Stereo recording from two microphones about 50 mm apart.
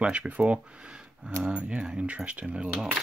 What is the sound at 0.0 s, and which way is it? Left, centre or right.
Speech, right.